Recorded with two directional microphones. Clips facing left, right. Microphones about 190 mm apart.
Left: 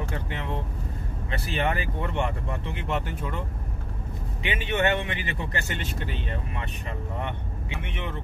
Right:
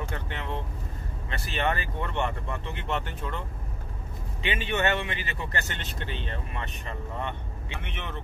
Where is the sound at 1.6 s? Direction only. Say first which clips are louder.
Left 1 dB; 15° left (ahead or behind).